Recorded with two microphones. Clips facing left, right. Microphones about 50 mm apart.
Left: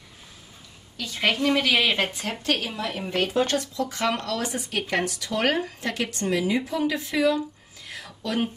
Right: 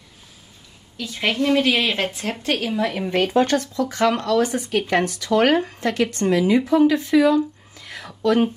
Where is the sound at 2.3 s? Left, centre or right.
Centre.